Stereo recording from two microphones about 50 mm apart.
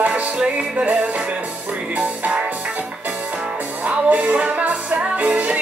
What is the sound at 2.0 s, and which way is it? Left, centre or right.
Music, right.